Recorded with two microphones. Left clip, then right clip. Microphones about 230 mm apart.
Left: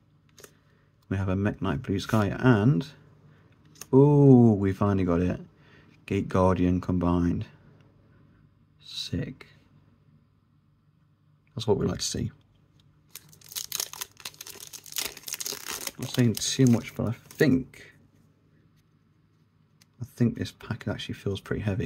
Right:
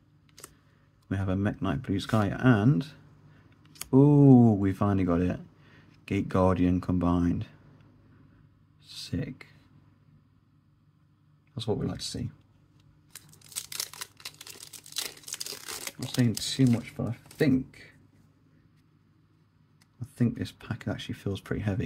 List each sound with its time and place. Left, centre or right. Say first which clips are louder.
1.0 s speech: left 2 dB; centre
3.9 s speech: left 2 dB; centre
8.8 s speech: left 3 dB; centre
11.5 s speech: left 6 dB; centre
13.7 s a sound: left 2 dB; centre
16.4 s speech: left 3 dB; centre
20.2 s speech: left 2 dB; centre